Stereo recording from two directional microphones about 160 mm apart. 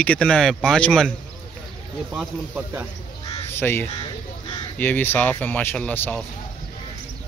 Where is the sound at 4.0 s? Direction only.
25° left (ahead or behind).